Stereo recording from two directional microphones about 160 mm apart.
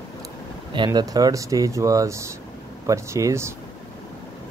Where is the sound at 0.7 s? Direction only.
25° right (ahead or behind).